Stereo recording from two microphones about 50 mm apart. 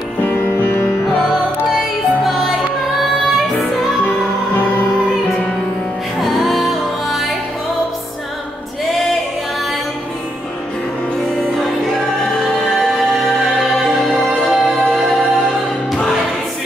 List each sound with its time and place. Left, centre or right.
0.3 s music: left
1.7 s music: centre
6.2 s music: centre
12.4 s music: centre